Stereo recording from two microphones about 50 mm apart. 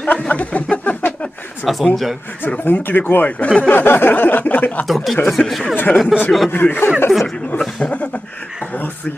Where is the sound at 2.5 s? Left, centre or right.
Left.